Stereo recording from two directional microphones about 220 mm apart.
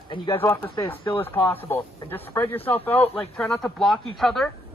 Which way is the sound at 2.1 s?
10° left (ahead or behind).